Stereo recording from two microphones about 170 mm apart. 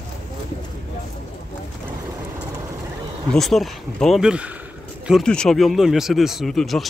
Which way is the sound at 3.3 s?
Centre (ahead or behind).